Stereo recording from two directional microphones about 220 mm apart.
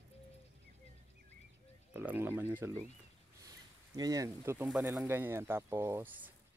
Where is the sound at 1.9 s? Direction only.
10° right (ahead or behind).